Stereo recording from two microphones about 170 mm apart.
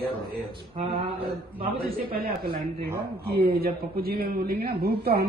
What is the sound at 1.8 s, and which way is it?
A man's voice, 65° right (ahead or behind).